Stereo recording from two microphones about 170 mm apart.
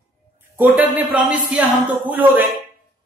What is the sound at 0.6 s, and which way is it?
A man's voice, 10° right (ahead or behind).